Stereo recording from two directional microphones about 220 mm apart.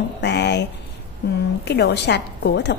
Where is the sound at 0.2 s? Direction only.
50° left (ahead or behind).